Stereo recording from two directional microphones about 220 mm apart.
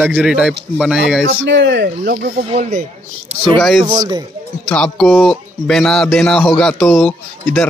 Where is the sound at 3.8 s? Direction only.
15° right (ahead or behind).